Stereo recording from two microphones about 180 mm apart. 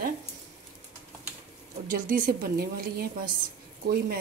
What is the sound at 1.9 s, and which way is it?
A woman's voice, 50° right (ahead or behind).